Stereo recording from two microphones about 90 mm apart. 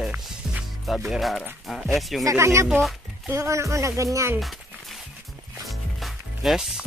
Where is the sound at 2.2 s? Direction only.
30° right (ahead or behind).